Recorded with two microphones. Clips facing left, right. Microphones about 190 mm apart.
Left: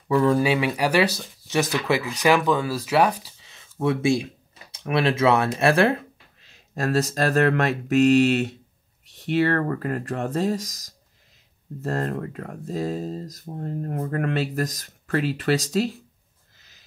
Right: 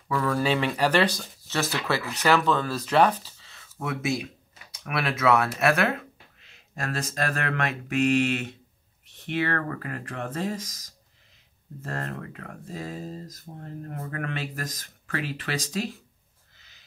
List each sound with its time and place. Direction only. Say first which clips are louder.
0.1 s speech: left 7 dB; 25° left (ahead or behind)
0.4 s speech: left 2 dB; 10° left (ahead or behind); by 10.2 s 45° left (ahead or behind)
11.8 s speech: left 8 dB; 35° left (ahead or behind)